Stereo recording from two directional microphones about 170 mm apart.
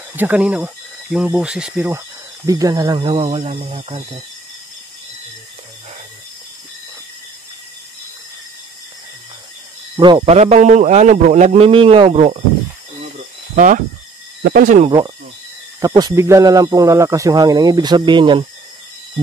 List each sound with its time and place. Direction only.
0.1 s speech: 10° right (ahead or behind); by 4.2 s 35° right (ahead or behind)
9.9 s a man's voice: 25° right (ahead or behind)
13.6 s speech: 50° right (ahead or behind)
14.9 s speech: 25° right (ahead or behind)